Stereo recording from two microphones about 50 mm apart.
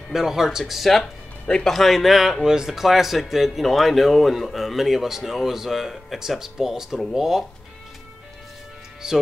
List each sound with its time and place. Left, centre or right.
0.1 s speech: centre
1.4 s speech: centre
1.7 s speech: centre
9.0 s speech: centre